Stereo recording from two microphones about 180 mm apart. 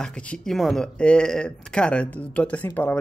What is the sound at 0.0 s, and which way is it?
Speech, 5° left (ahead or behind).